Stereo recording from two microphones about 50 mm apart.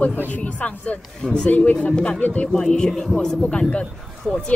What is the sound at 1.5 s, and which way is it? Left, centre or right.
Speech, left.